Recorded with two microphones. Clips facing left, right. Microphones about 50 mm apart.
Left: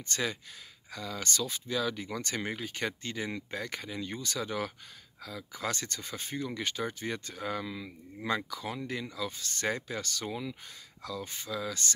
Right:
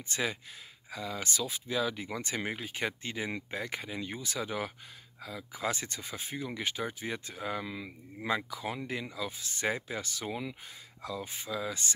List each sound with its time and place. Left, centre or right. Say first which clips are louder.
0.1 s speech: even; centre